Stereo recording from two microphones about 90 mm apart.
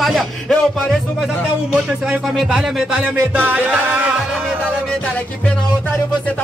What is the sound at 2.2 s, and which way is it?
Music, centre (ahead or behind).